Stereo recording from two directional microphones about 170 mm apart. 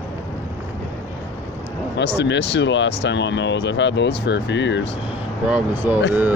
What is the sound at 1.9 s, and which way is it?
Speech, 85° left.